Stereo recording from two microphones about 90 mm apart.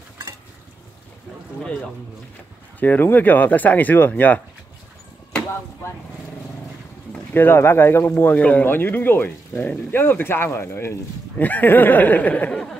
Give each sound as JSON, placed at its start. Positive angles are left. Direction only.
{"t": 1.6, "sound": "a man's voice", "side_deg": 10}
{"t": 2.8, "sound": "speech", "side_deg": 20}
{"t": 7.3, "sound": "speech", "side_deg": 25}